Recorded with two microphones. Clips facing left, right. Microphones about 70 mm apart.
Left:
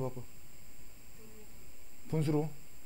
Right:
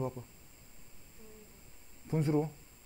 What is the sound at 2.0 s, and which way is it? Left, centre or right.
Speech, centre.